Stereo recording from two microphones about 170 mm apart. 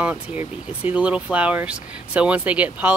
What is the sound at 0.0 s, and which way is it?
Speech, 10° right (ahead or behind).